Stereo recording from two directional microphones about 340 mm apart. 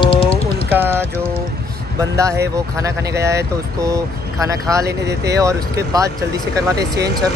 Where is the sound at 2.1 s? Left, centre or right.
Centre.